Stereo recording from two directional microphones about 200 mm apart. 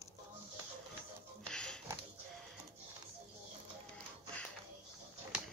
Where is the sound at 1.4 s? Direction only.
5° left (ahead or behind).